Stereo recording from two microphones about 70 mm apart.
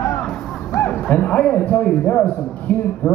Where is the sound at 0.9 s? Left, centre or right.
Left.